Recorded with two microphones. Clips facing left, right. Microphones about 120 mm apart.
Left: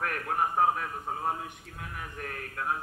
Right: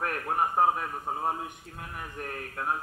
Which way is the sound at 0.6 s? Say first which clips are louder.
Right 2 dB; 15° right (ahead or behind).